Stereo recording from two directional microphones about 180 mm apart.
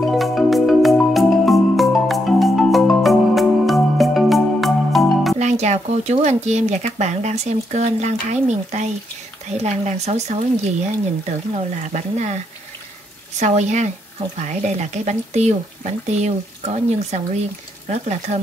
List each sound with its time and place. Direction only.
0.0 s music: centre (ahead or behind)
5.4 s speech: 40° right (ahead or behind)
13.4 s speech: 40° right (ahead or behind)